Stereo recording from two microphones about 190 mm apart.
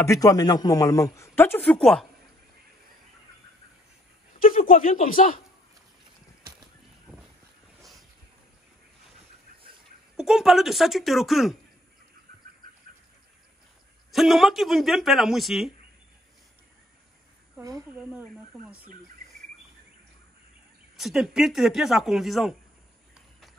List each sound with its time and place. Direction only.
0.0 s speech: 15° left (ahead or behind)
4.4 s a man's voice: 45° left (ahead or behind)
7.1 s boat: 5° right (ahead or behind)
10.1 s speech: centre (ahead or behind)
14.1 s speech: centre (ahead or behind)
17.6 s speech: 15° right (ahead or behind)
17.9 s speech: 5° right (ahead or behind)
20.9 s speech: centre (ahead or behind)